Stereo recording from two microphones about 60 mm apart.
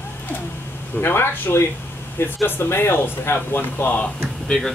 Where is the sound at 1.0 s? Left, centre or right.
Left.